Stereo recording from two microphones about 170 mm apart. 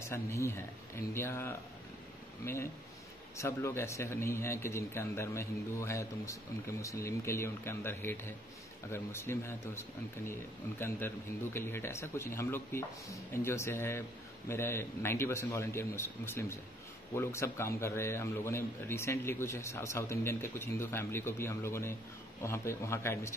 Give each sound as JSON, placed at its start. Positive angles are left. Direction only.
{"t": 0.0, "sound": "a man's voice", "side_deg": 15}